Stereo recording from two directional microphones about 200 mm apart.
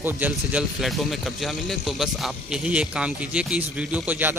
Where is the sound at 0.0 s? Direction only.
10° right (ahead or behind).